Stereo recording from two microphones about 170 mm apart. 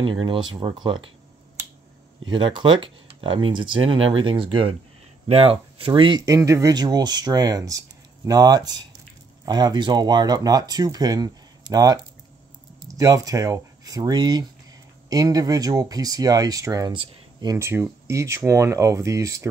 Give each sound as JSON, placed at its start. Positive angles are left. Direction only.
{"t": 0.0, "sound": "speech", "side_deg": -30}
{"t": 2.3, "sound": "speech", "side_deg": -30}